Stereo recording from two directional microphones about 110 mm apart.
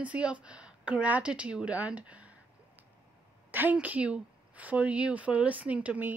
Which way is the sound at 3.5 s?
15° right (ahead or behind).